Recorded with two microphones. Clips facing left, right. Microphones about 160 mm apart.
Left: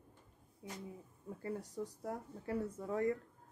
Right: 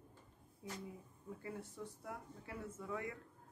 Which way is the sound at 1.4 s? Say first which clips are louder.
Left 7 dB; 40° left (ahead or behind).